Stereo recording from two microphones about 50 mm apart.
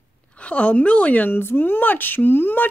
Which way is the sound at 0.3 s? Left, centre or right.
Left.